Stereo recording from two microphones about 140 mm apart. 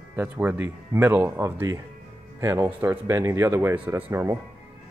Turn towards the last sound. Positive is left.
turn(degrees=-15)  # may be behind; listen again after turning